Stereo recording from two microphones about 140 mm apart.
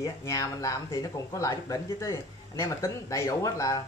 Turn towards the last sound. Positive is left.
turn(degrees=25)  # may be behind; listen again after turning